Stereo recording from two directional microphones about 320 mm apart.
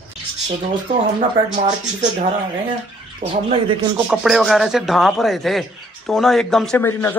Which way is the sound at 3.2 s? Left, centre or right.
Right.